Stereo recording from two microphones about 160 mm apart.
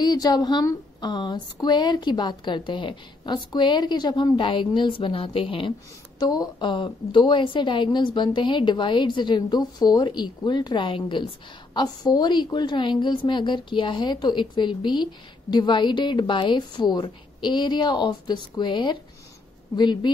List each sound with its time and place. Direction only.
0.0 s speech: 25° left (ahead or behind)
6.1 s speech: 25° left (ahead or behind)